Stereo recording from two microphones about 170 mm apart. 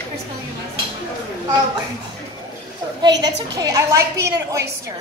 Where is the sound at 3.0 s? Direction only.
25° right (ahead or behind).